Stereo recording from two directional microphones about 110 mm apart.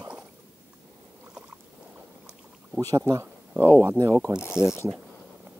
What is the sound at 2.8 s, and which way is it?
Speech, 35° right (ahead or behind).